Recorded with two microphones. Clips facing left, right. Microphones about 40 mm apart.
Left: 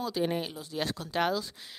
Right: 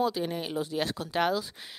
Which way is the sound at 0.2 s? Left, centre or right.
Centre.